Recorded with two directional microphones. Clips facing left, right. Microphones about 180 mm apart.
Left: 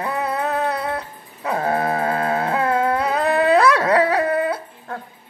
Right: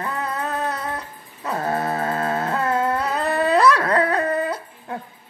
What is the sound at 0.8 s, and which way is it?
Dog, 10° left (ahead or behind).